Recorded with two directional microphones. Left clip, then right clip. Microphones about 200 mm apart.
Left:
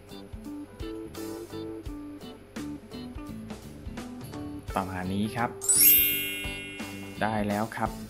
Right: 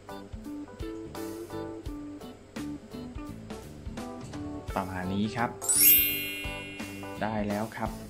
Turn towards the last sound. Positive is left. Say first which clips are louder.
# left 3 dB
turn(degrees=20)  # may be behind; listen again after turning